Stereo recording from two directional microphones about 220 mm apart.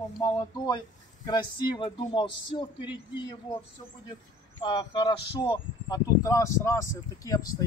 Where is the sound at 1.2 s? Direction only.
20° left (ahead or behind).